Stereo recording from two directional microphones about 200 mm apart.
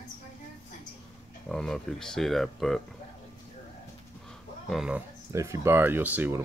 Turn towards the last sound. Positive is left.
turn(degrees=-10)  # may be behind; listen again after turning